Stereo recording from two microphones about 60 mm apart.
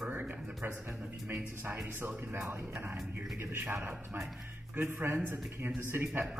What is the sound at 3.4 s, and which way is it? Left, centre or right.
Speech, right.